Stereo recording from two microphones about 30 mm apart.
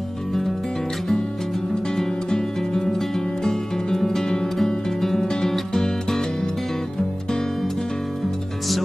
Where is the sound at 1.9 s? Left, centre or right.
Centre.